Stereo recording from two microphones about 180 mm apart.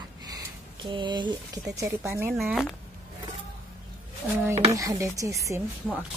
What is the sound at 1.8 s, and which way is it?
Speech, 15° right (ahead or behind).